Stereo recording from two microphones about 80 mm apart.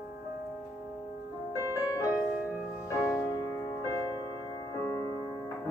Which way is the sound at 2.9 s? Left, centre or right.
Left.